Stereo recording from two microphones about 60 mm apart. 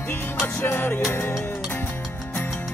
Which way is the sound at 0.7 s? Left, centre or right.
Left.